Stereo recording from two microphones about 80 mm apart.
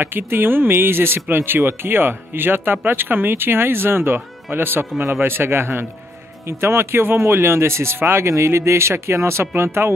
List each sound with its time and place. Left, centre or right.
0.0 s speech: right